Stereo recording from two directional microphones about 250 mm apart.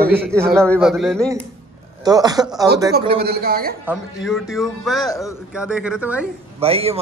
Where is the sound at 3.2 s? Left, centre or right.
Right.